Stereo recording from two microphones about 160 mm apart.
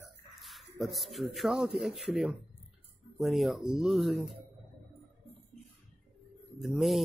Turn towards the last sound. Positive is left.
turn(degrees=0)  # may be behind; listen again after turning